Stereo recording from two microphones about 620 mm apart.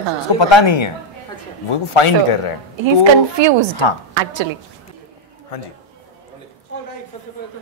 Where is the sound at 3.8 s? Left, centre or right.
Left.